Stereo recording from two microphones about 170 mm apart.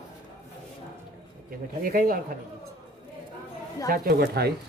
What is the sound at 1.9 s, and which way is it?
Speech, 55° right (ahead or behind).